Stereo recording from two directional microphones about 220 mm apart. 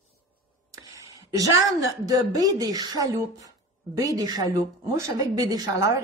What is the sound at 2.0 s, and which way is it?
A woman's voice, 15° right (ahead or behind).